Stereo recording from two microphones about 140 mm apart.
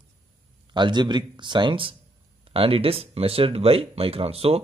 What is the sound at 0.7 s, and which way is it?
Speech, 30° right (ahead or behind).